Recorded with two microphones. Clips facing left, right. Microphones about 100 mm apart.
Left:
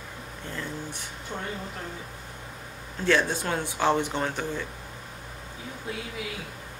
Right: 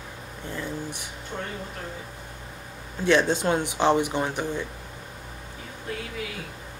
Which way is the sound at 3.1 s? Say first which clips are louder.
Right 4 dB; 20° right (ahead or behind).